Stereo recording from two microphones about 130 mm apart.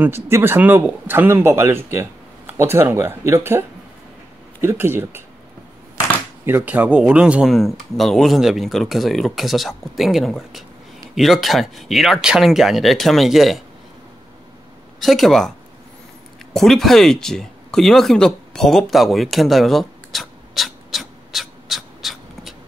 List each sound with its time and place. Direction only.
0.0 s a man's voice: 15° right (ahead or behind)
6.4 s speech: 15° right (ahead or behind)
15.0 s speech: centre (ahead or behind)
16.5 s speech: centre (ahead or behind)